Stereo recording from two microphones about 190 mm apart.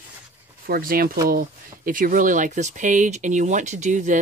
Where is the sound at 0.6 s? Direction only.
50° right (ahead or behind).